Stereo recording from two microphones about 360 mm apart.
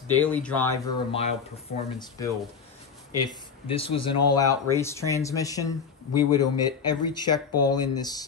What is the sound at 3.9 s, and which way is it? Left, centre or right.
Speech, left.